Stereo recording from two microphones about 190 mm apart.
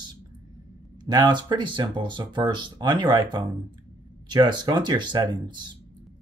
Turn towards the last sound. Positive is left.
turn(degrees=-25)  # may be behind; listen again after turning